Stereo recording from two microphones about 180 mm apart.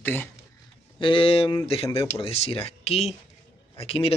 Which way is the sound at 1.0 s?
30° left (ahead or behind).